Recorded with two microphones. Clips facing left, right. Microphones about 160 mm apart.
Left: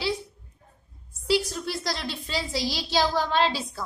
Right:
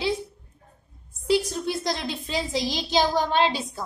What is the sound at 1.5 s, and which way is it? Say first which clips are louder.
A woman's voice: right 4 dB; 20° right (ahead or behind).